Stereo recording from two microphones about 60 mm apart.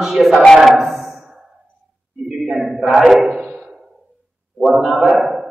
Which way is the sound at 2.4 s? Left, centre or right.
Centre.